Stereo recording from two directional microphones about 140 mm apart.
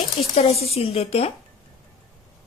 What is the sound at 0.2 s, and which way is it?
Speech, 50° left (ahead or behind).